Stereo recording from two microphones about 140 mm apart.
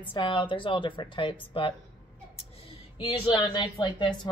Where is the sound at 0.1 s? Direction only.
40° left (ahead or behind).